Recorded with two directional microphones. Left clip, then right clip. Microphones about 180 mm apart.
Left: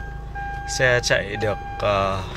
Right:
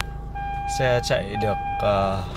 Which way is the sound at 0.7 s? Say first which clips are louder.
Left 4 dB; 5° right (ahead or behind).